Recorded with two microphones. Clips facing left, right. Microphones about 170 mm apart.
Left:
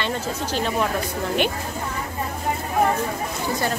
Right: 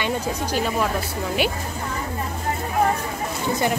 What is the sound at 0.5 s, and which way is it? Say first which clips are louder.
Speech: even; 5° right (ahead or behind).